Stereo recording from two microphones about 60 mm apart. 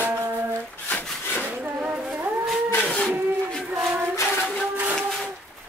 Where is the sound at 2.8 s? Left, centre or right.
Centre.